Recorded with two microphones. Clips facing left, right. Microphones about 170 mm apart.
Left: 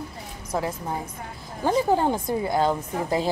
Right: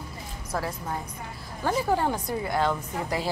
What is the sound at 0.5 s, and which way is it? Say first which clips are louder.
A woman's voice: left 3 dB; 20° left (ahead or behind).